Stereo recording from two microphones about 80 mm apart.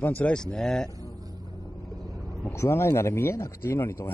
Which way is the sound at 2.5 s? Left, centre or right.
Left.